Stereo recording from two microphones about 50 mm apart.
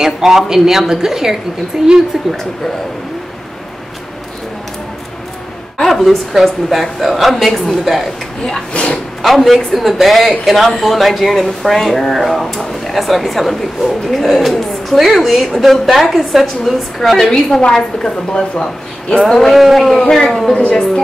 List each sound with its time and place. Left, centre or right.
0.0 s a woman's voice: centre
5.9 s a woman's voice: centre
8.7 s speech: left
9.2 s a woman's voice: centre
20.0 s speech: centre